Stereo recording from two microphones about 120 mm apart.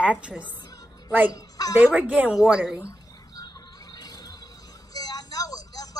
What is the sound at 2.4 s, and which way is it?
Speech, centre (ahead or behind).